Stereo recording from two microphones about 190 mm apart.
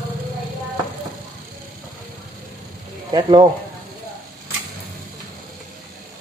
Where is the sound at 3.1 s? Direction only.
25° right (ahead or behind).